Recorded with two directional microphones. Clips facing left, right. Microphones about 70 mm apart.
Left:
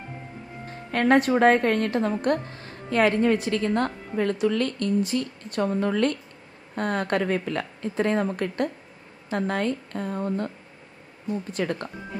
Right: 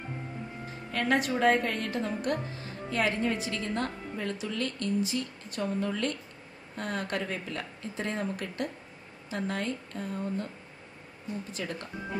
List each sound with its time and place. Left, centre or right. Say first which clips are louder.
0.9 s a woman's voice: left 8 dB; left
11.5 s a woman's voice: left 9 dB; left